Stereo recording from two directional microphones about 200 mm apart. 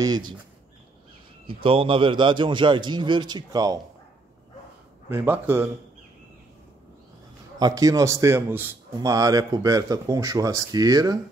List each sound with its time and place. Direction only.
1.5 s a man's voice: 25° right (ahead or behind)
5.1 s a man's voice: 10° right (ahead or behind)
7.5 s a man's voice: 20° right (ahead or behind)